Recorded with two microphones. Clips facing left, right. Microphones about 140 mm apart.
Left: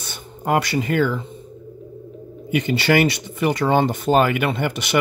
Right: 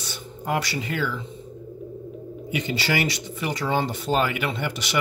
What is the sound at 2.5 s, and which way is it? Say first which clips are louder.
Speech: left 8 dB; 55° left (ahead or behind).